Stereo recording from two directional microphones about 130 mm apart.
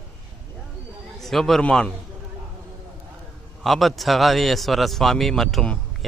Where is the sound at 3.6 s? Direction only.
Centre (ahead or behind).